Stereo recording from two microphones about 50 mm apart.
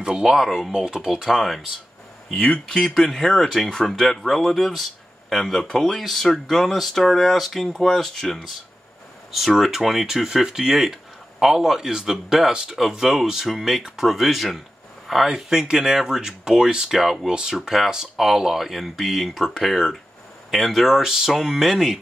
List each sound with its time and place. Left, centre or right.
0.0 s speech: centre
2.3 s speech: left
2.8 s speech: centre
9.3 s speech: centre